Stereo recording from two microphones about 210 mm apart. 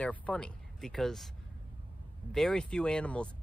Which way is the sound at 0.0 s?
5° left (ahead or behind).